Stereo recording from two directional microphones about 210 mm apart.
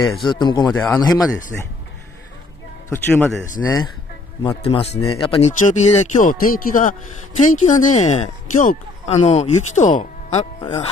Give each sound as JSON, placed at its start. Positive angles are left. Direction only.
{"t": 0.2, "sound": "speech", "side_deg": 20}
{"t": 0.7, "sound": "speech", "side_deg": 5}
{"t": 1.0, "sound": "speech", "side_deg": 15}
{"t": 2.9, "sound": "speech", "side_deg": 10}
{"t": 4.4, "sound": "speech", "side_deg": 25}